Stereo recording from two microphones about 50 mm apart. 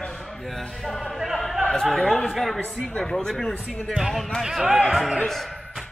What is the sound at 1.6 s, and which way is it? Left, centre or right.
Chatter, centre.